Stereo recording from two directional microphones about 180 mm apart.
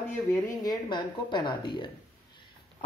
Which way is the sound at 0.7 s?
25° left (ahead or behind).